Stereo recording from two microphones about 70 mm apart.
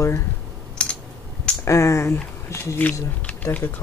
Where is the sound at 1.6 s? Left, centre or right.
Left.